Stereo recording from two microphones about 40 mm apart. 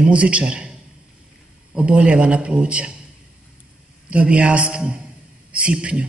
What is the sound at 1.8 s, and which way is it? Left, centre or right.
A man's voice, right.